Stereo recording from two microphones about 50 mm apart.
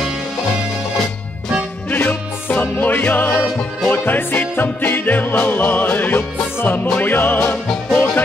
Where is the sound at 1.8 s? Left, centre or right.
Left.